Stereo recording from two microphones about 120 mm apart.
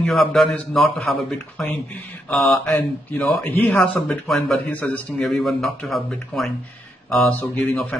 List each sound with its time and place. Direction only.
0.0 s speech: centre (ahead or behind)
2.2 s a man's voice: 15° left (ahead or behind)
2.6 s speech: 5° left (ahead or behind)
3.4 s a man's voice: 15° left (ahead or behind)